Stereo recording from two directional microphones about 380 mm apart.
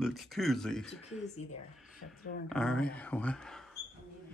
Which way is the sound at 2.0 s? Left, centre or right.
Left.